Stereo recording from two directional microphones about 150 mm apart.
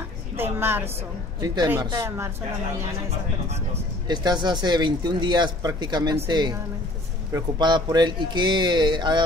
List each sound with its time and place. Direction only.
0.4 s a woman's voice: 15° right (ahead or behind)
1.4 s speech: 25° right (ahead or behind)
3.1 s speech: 45° right (ahead or behind)
4.1 s speech: 30° right (ahead or behind)